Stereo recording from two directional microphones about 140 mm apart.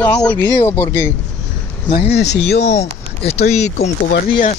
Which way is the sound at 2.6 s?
50° left (ahead or behind).